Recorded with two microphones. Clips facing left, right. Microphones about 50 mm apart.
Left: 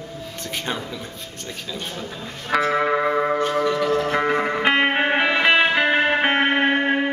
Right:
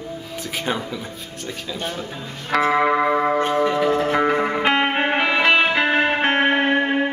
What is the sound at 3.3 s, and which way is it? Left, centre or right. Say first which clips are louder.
Music: right 2 dB; right.